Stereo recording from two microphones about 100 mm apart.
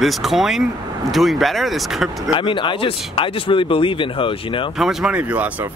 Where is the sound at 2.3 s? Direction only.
55° left (ahead or behind).